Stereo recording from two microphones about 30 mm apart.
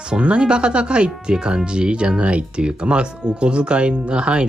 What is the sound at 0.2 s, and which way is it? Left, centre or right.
Speech, right.